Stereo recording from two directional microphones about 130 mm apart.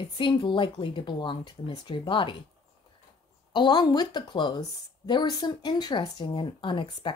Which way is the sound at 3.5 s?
35° left (ahead or behind).